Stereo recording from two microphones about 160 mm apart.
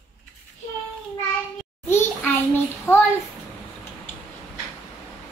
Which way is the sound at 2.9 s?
15° left (ahead or behind).